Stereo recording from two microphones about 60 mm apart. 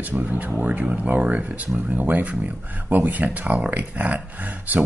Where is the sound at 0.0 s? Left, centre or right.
Right.